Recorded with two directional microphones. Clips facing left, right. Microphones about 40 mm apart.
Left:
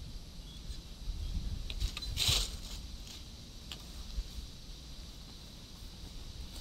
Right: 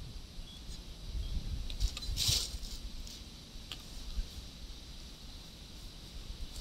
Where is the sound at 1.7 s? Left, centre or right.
Left.